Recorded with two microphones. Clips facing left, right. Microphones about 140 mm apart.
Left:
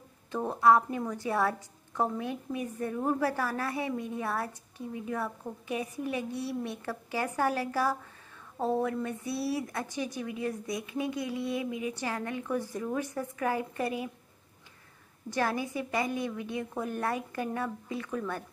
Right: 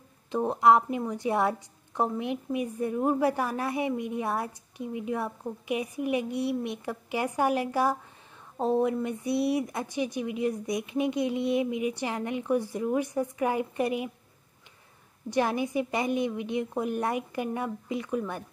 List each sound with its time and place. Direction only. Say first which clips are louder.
0.3 s a woman's voice: right 2 dB; 20° right (ahead or behind)
15.2 s a woman's voice: right 4 dB; 15° right (ahead or behind)